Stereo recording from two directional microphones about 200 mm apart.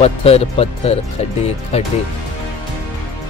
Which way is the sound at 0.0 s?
30° left (ahead or behind).